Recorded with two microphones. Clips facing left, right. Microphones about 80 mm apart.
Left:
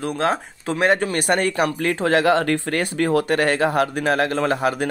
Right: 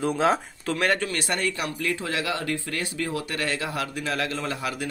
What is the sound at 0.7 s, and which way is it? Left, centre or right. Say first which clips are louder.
Speech: left 6 dB; left.